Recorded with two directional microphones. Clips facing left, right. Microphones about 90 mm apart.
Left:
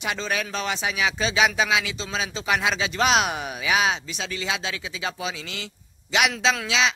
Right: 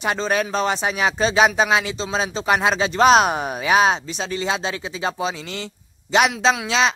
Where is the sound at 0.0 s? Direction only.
40° right (ahead or behind).